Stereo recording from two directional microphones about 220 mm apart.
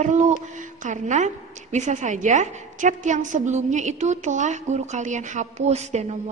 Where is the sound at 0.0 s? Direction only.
35° right (ahead or behind).